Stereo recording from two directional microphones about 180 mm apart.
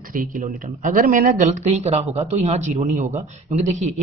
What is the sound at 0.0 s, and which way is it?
A man's voice, 50° right (ahead or behind).